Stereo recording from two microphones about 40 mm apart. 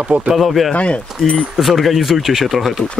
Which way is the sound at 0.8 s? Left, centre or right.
Left.